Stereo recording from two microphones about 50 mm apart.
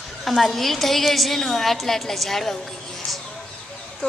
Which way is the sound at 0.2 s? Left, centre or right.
Centre.